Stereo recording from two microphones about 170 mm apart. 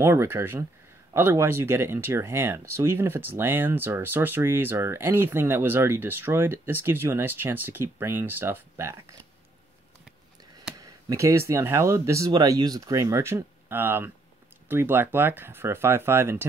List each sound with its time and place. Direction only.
0.0 s speech: 15° right (ahead or behind)
10.8 s speech: 20° right (ahead or behind)